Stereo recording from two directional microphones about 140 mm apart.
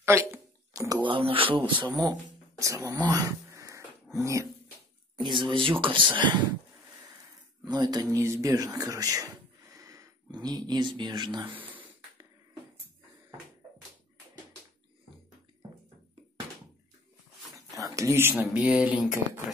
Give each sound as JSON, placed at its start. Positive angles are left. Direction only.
{"t": 0.0, "sound": "a sound", "side_deg": -20}
{"t": 1.0, "sound": "speech", "side_deg": -40}
{"t": 1.9, "sound": "speech", "side_deg": -30}
{"t": 3.1, "sound": "a sound", "side_deg": -25}
{"t": 5.1, "sound": "speech", "side_deg": -35}
{"t": 7.6, "sound": "speech", "side_deg": -30}
{"t": 17.9, "sound": "speech", "side_deg": -20}